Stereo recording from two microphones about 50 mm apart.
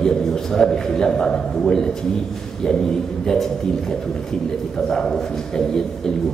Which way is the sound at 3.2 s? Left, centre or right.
Centre.